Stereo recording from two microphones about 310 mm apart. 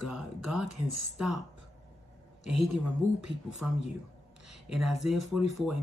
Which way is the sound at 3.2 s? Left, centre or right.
Centre.